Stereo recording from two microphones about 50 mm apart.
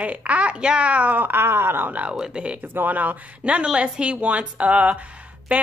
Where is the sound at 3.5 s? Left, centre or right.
Right.